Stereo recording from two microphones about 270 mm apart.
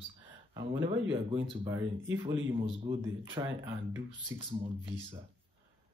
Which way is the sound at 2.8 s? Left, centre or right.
Centre.